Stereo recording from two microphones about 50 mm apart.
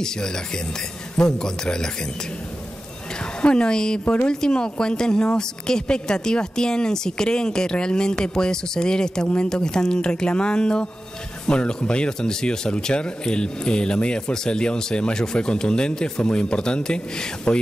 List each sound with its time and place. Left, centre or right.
0.0 s speech: centre
3.3 s speech: centre
4.0 s speech: left
4.3 s speech: centre